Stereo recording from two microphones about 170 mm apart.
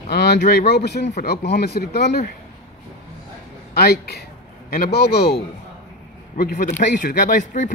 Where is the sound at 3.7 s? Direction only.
70° left (ahead or behind).